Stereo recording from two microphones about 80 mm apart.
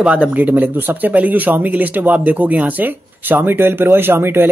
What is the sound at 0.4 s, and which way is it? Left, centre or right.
Speech, right.